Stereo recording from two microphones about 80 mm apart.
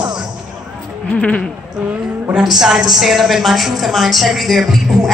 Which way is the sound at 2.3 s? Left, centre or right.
Centre.